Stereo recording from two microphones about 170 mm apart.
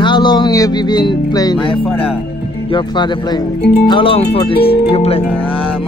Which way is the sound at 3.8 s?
30° left (ahead or behind).